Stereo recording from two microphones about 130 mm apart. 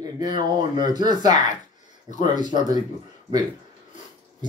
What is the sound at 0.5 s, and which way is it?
Speech, 35° right (ahead or behind).